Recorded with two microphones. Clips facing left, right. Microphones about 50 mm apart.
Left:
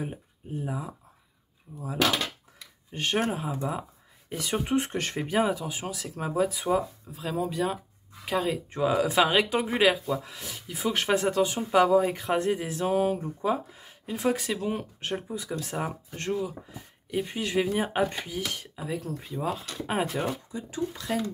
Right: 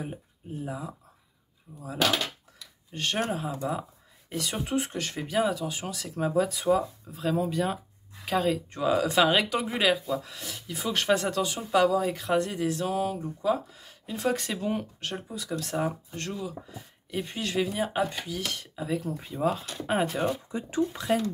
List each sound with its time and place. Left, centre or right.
1.7 s speech: centre
2.9 s speech: centre
4.4 s speech: left
4.8 s speech: left; by 9.5 s centre
9.5 s speech: centre
15.0 s speech: left
16.7 s speech: centre
17.6 s speech: left
18.9 s speech: centre
20.2 s speech: right